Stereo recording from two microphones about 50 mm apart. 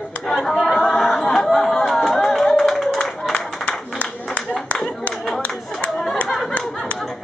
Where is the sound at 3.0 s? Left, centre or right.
Centre.